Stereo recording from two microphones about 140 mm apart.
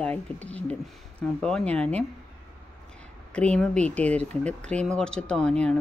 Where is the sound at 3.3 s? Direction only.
5° left (ahead or behind).